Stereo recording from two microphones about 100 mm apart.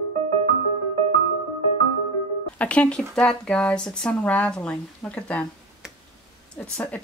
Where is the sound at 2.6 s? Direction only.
15° left (ahead or behind).